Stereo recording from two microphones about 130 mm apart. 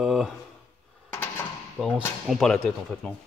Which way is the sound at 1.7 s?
Centre (ahead or behind).